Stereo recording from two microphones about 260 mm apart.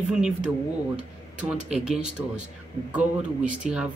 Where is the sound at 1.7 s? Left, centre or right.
Centre.